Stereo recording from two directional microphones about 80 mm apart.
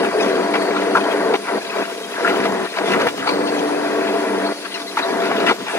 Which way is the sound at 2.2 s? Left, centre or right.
Left.